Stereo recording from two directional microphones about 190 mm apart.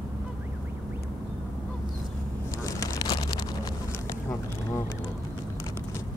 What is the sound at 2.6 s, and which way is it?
Vehicle, 15° left (ahead or behind).